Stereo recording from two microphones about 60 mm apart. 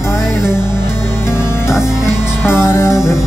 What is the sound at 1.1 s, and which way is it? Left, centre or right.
Music, left.